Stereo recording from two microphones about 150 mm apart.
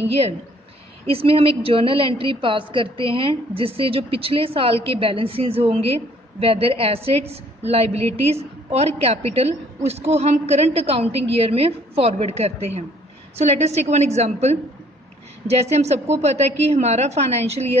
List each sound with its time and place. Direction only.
1.0 s a woman's voice: 40° right (ahead or behind)